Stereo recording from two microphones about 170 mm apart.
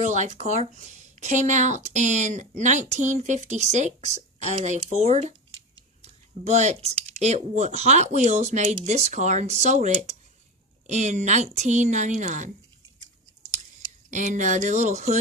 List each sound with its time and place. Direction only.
0.0 s speech: 45° right (ahead or behind)
14.1 s speech: 45° right (ahead or behind)